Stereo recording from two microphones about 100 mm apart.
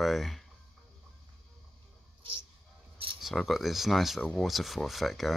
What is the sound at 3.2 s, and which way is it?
Speech, centre (ahead or behind).